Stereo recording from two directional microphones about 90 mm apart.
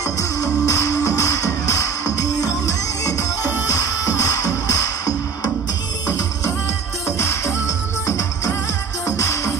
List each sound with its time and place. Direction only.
0.0 s music: 40° left (ahead or behind)
4.5 s music: 40° left (ahead or behind)